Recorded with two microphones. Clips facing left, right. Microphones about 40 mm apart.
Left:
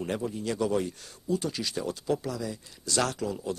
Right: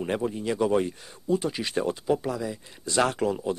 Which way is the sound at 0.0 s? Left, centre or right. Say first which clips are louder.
Right 4 dB; right.